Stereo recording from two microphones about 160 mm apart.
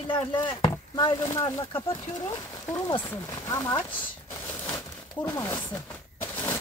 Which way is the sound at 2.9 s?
20° left (ahead or behind).